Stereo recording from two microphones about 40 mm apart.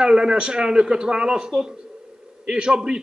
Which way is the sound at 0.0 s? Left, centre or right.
Centre.